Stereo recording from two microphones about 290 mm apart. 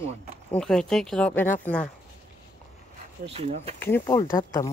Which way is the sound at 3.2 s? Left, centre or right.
Right.